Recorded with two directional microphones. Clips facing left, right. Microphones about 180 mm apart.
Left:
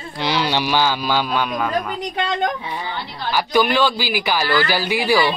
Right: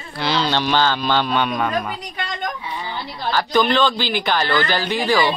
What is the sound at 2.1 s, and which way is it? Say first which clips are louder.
Speech: left 10 dB; 65° left (ahead or behind).